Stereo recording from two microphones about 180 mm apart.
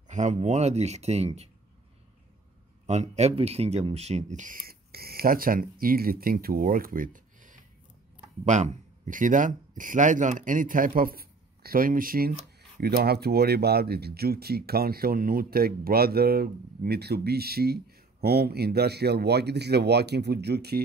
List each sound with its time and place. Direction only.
0.1 s speech: 40° right (ahead or behind)
2.9 s speech: 40° right (ahead or behind); by 20.8 s 65° right (ahead or behind)